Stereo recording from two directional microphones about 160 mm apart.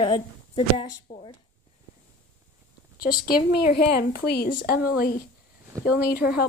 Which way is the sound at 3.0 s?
65° left (ahead or behind).